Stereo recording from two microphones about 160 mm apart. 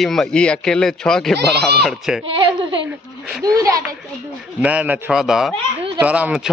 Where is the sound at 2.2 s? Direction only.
35° right (ahead or behind).